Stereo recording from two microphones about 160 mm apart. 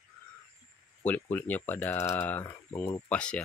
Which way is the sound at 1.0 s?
10° left (ahead or behind).